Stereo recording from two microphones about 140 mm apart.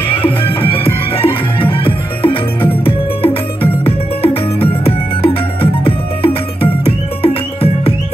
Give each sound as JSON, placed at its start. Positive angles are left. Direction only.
{"t": 0.1, "sound": "music", "side_deg": 40}